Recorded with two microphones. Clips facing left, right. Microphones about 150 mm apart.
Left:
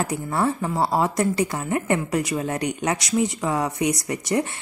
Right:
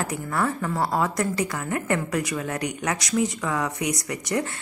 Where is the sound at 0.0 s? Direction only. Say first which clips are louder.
Left 3 dB; 25° left (ahead or behind).